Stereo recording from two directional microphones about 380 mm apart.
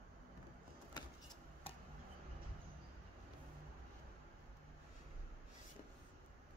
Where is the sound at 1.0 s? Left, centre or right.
Centre.